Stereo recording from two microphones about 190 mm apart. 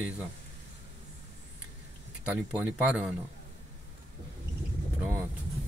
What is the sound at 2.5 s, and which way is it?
Speech, 5° left (ahead or behind).